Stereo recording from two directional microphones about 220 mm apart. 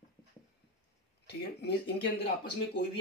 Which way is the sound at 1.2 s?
50° left (ahead or behind).